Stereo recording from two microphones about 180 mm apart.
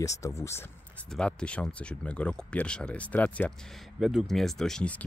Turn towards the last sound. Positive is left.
turn(degrees=5)  # may be behind; listen again after turning